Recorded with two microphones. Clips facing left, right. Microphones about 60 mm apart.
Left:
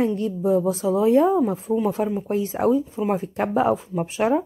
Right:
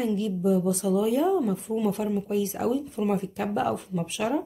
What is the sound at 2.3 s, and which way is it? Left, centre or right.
Speech, left.